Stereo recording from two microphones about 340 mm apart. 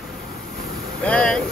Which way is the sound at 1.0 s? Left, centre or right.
Centre.